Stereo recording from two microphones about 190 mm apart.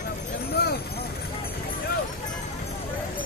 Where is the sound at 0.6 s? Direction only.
60° left (ahead or behind).